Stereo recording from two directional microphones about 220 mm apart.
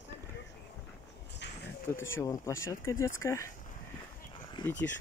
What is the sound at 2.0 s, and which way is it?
Speech, 10° left (ahead or behind).